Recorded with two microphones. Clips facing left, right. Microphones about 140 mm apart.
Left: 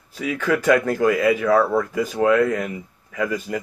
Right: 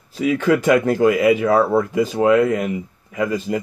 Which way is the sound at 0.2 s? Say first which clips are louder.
Right 5 dB; 25° right (ahead or behind).